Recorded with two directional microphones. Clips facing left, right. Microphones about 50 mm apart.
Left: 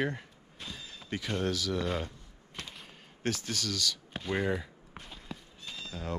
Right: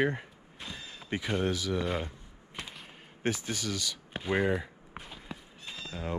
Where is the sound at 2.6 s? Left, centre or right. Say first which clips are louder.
Right 2 dB; centre.